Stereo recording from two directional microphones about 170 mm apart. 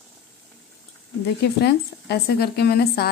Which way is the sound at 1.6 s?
75° left (ahead or behind).